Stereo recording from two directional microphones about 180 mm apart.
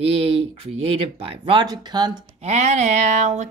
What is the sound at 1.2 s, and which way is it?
Speech, 30° right (ahead or behind).